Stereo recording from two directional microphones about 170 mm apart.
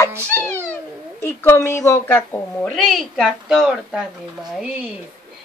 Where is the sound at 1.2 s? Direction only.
15° left (ahead or behind).